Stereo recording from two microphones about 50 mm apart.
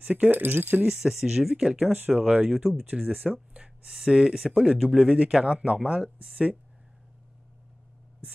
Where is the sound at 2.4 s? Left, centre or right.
Centre.